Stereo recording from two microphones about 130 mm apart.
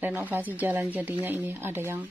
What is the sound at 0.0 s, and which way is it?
A woman's voice, 15° right (ahead or behind).